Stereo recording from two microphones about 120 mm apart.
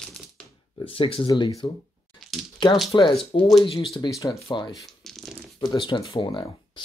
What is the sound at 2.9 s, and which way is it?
Speech, 45° left (ahead or behind).